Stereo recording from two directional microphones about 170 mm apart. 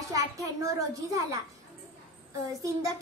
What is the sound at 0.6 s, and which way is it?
Speech, 20° right (ahead or behind).